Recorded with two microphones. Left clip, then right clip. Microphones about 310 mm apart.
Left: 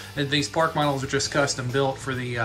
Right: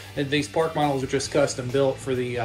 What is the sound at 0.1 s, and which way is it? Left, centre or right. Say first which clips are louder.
Speech: even; centre.